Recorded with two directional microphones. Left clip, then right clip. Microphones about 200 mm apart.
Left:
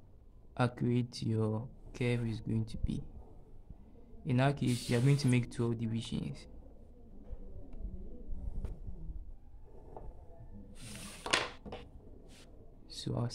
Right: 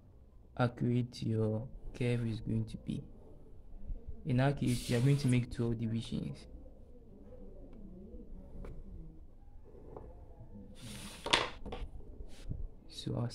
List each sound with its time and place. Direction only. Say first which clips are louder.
0.6 s speech: left 1 dB; 5° left (ahead or behind)
4.2 s speech: left 1 dB; 5° left (ahead or behind)
11.6 s a sound: right 1 dB; 40° right (ahead or behind)
12.9 s speech: left 1 dB; 10° left (ahead or behind)